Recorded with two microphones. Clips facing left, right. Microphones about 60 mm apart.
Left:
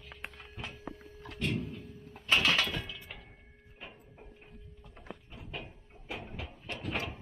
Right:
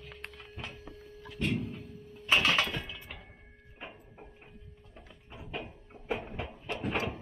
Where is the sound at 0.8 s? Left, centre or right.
Left.